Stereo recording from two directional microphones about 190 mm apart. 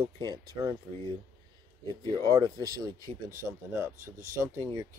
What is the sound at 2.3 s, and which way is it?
Speech, 20° right (ahead or behind).